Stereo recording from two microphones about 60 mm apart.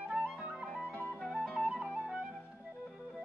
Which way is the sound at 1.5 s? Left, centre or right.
Centre.